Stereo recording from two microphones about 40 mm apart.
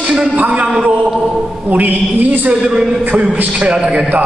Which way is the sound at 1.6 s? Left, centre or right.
Right.